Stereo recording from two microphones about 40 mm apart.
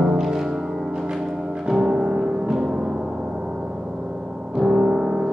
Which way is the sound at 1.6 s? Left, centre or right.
Centre.